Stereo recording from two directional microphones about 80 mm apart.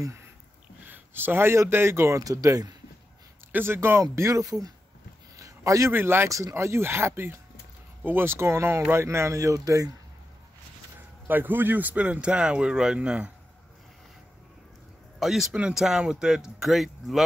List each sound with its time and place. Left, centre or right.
0.8 s speech: right
3.5 s speech: right
4.0 s speech: right
5.3 s a sound: right
5.9 s speech: right
11.2 s speech: right
15.1 s speech: centre